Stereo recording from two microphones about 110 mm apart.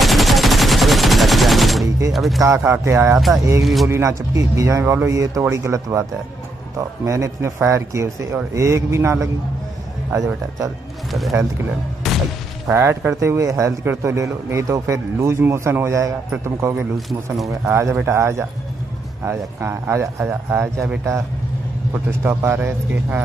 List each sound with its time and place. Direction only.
0.0 s gunshot: centre (ahead or behind)
2.1 s speech: centre (ahead or behind)
2.4 s a man's voice: 25° right (ahead or behind)
3.6 s speech: centre (ahead or behind)
3.9 s a man's voice: 25° right (ahead or behind)
7.1 s a man's voice: 25° right (ahead or behind)
11.1 s speech: centre (ahead or behind)
12.1 s a sound: centre (ahead or behind)
12.7 s a man's voice: 25° right (ahead or behind)
16.9 s speech: centre (ahead or behind)
17.5 s a man's voice: 25° right (ahead or behind)
22.2 s a man's voice: 20° right (ahead or behind)